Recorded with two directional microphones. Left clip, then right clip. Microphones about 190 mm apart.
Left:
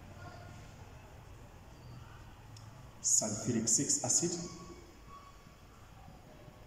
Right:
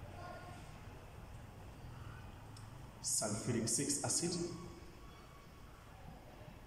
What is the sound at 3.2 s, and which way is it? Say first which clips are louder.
Speech: left 3 dB; 15° left (ahead or behind).